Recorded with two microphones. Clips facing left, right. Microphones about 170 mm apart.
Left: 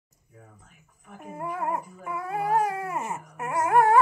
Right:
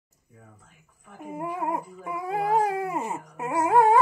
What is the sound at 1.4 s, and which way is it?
Dog, 15° right (ahead or behind).